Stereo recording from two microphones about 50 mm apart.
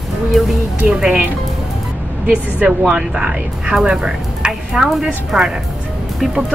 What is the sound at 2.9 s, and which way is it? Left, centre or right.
Speech, centre.